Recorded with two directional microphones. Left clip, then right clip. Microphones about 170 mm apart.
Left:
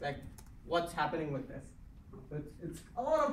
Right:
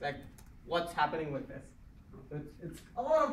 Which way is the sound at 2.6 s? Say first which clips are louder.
Left 2 dB; 25° left (ahead or behind).